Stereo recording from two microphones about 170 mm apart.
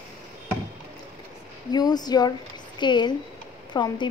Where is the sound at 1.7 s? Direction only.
25° left (ahead or behind).